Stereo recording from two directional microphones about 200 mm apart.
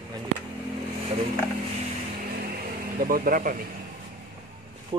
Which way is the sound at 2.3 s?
50° right (ahead or behind).